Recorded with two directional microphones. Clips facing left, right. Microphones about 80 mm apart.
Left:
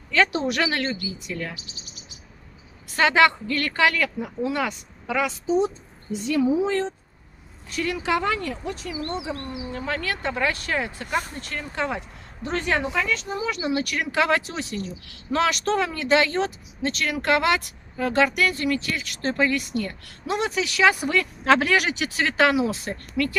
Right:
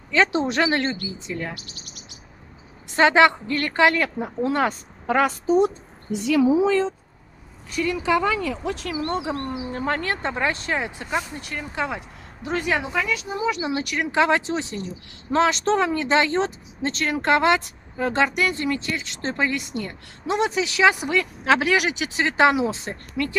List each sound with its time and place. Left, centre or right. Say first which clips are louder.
0.1 s speech: right 1 dB; right
1.5 s speech: right 3 dB; right
2.9 s speech: right 3 dB; right
6.1 s speech: right 3 dB; right
8.6 s speech: right 4 dB; right
9.1 s speech: right 4 dB; right
9.4 s speech: right 4 dB; right